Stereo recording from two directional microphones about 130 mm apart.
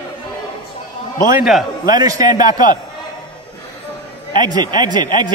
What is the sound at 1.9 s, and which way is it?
Speech, 30° right (ahead or behind).